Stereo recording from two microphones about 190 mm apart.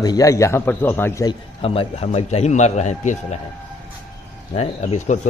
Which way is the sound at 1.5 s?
30° left (ahead or behind).